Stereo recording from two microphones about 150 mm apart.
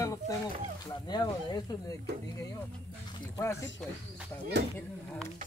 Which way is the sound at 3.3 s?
20° left (ahead or behind).